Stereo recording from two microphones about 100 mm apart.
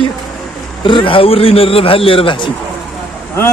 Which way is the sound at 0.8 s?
60° left (ahead or behind).